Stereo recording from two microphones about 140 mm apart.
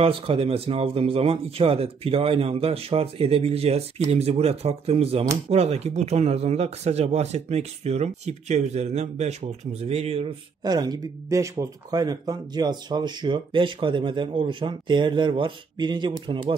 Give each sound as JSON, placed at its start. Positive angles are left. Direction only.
{"t": 0.0, "sound": "speech", "side_deg": -40}
{"t": 10.6, "sound": "speech", "side_deg": -30}